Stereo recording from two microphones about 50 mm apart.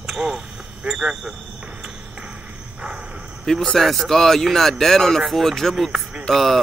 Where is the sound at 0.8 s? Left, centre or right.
Centre.